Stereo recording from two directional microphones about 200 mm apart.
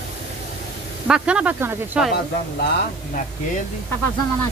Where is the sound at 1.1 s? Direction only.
5° right (ahead or behind).